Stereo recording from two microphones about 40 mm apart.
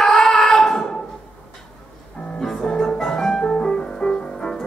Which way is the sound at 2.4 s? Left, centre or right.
Centre.